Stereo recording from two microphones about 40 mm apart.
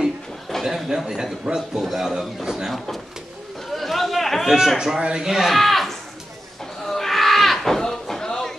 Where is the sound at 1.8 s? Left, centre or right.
Centre.